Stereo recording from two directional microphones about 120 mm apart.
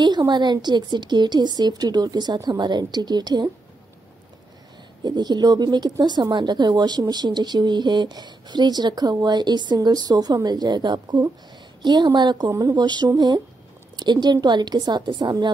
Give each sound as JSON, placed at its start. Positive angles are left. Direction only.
{"t": 0.0, "sound": "speech", "side_deg": -35}
{"t": 5.0, "sound": "speech", "side_deg": -35}